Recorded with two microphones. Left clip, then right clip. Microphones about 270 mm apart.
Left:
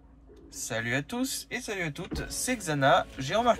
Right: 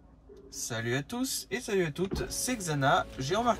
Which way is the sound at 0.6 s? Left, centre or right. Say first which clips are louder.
Left 3 dB; centre.